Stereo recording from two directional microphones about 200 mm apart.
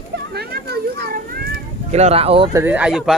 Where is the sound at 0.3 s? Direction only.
50° right (ahead or behind).